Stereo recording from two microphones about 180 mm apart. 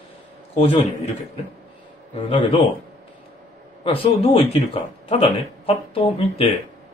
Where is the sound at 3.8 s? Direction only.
30° left (ahead or behind).